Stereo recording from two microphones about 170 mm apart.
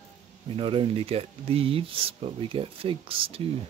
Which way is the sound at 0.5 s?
30° right (ahead or behind).